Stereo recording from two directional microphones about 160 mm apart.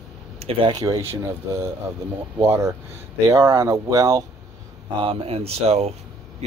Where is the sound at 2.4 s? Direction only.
20° right (ahead or behind).